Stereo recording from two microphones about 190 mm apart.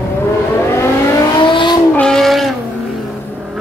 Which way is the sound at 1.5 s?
25° left (ahead or behind).